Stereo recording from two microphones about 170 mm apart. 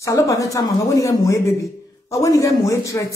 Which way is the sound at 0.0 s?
20° left (ahead or behind).